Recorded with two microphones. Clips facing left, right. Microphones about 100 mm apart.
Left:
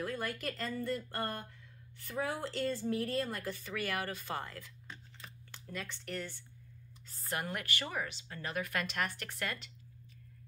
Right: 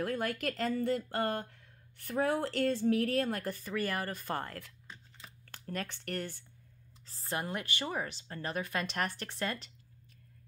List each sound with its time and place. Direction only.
0.0 s speech: 55° right (ahead or behind)
7.1 s speech: 25° right (ahead or behind)